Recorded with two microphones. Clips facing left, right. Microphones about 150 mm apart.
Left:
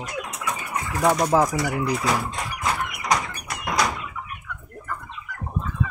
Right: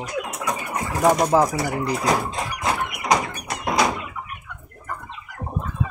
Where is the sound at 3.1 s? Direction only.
30° right (ahead or behind).